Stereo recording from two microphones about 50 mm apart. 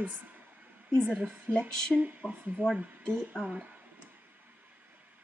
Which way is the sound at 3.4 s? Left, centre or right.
Right.